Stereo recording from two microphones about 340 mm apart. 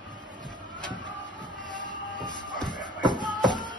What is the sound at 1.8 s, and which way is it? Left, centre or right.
Train, left.